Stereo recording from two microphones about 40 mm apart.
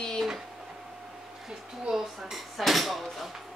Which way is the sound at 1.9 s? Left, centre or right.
Centre.